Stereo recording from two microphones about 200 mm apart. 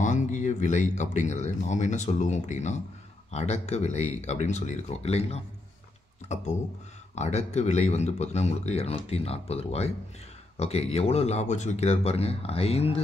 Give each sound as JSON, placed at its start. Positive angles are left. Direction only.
{"t": 0.0, "sound": "speech", "side_deg": 40}